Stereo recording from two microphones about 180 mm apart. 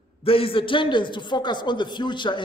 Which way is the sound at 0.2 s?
30° left (ahead or behind).